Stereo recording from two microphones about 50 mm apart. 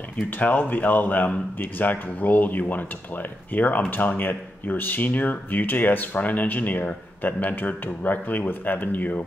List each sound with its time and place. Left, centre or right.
0.4 s speech: left